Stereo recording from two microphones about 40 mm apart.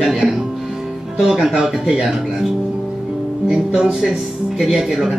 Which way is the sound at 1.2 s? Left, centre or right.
Centre.